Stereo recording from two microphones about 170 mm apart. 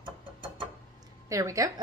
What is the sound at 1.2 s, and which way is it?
Speech, 20° right (ahead or behind).